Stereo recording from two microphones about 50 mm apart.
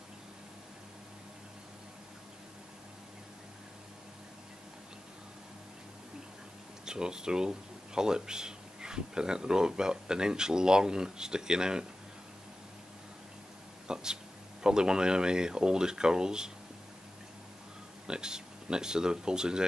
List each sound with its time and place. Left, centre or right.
6.9 s speech: centre
13.8 s a sound: centre
14.6 s speech: centre
18.0 s speech: centre